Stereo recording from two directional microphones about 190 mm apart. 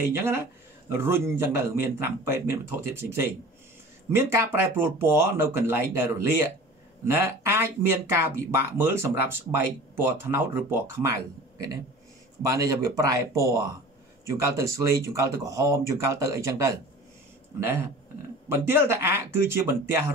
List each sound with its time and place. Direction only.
0.8 s speech: 10° right (ahead or behind)
12.4 s speech: 15° right (ahead or behind)